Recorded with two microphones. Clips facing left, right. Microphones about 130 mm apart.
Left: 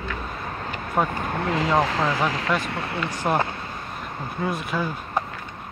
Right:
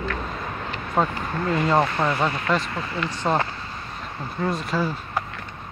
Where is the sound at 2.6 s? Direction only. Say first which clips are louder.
Left 1 dB; 65° left (ahead or behind).